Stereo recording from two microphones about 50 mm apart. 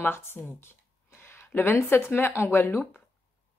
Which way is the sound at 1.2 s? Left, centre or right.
Left.